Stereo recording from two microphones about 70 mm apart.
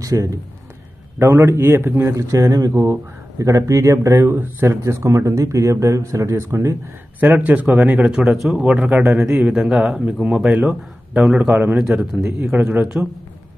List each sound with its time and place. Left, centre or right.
0.0 s speech: right
1.2 s speech: right
4.3 s speech: right
4.8 s speech: right
7.2 s a man's voice: right
8.1 s a man's voice: centre
12.3 s speech: right
12.5 s speech: centre